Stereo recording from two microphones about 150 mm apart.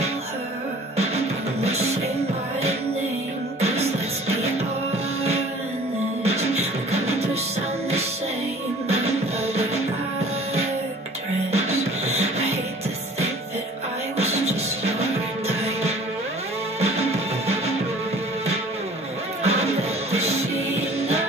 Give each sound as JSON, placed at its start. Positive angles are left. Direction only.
{"t": 0.9, "sound": "music", "side_deg": -45}
{"t": 3.6, "sound": "music", "side_deg": -45}
{"t": 6.2, "sound": "music", "side_deg": -45}
{"t": 11.5, "sound": "music", "side_deg": -45}
{"t": 14.1, "sound": "music", "side_deg": -45}
{"t": 19.4, "sound": "music", "side_deg": -45}